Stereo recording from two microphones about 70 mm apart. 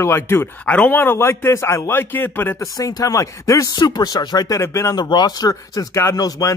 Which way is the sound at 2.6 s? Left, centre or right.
Left.